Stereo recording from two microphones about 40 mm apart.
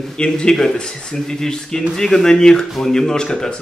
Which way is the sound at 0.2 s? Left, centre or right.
Centre.